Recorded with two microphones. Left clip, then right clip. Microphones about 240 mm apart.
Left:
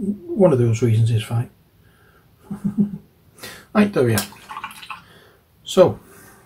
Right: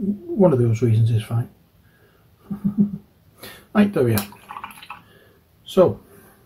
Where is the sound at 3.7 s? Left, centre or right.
Centre.